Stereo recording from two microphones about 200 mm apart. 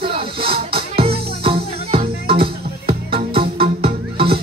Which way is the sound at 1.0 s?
30° right (ahead or behind).